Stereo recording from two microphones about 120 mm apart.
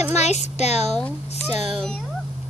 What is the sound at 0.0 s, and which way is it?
Speech, 65° left (ahead or behind).